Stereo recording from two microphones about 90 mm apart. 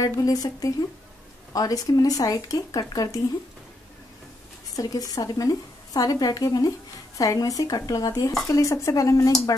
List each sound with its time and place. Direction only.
0.0 s speech: 40° left (ahead or behind)
4.7 s a woman's voice: 40° left (ahead or behind)